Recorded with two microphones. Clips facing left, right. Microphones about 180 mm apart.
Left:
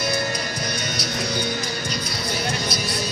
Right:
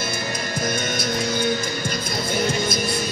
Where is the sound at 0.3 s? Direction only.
50° right (ahead or behind).